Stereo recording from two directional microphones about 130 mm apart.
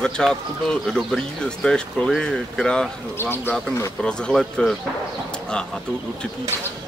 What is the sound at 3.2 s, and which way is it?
Speech, 15° left (ahead or behind).